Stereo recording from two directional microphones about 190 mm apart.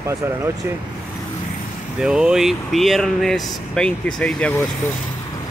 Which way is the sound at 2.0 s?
5° right (ahead or behind).